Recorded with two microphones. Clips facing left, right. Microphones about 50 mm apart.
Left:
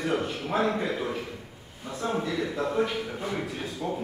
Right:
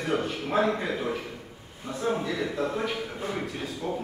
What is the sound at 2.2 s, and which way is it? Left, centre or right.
Speech, centre.